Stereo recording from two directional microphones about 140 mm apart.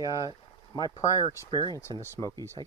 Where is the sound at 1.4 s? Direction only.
35° left (ahead or behind).